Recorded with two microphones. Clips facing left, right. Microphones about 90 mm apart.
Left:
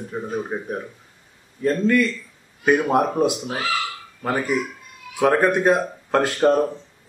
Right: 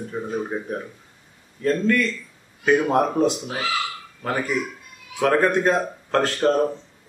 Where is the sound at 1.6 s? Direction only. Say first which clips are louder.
Left 2 dB; 10° left (ahead or behind).